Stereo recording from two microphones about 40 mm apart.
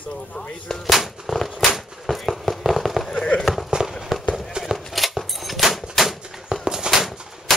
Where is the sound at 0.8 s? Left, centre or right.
Centre.